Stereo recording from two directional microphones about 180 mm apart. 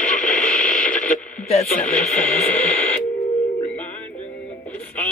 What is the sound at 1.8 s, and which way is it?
Speech, 10° left (ahead or behind).